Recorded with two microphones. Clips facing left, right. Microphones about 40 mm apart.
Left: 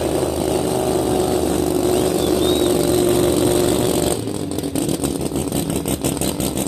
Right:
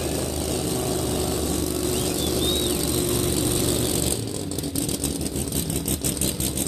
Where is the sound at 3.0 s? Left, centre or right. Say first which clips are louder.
Left 9 dB; left.